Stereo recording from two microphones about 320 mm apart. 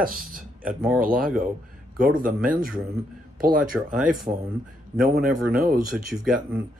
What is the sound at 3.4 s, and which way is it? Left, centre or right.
Speech, right.